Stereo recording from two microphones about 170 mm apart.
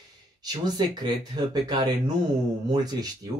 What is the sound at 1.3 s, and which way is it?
Speech, 25° right (ahead or behind).